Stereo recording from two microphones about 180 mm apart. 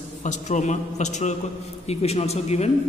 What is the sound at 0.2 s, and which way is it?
A man's voice, 40° left (ahead or behind).